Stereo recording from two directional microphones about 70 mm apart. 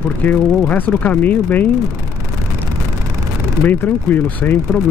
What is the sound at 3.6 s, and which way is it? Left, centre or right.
Speech, left.